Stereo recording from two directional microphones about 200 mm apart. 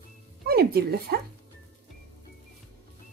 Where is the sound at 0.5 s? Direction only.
50° right (ahead or behind).